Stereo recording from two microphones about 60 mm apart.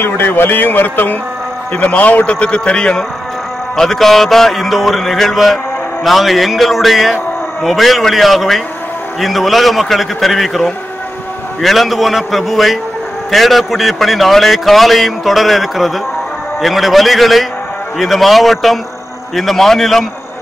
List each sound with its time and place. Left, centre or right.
0.0 s a man's voice: left; by 3.1 s centre
3.7 s a man's voice: centre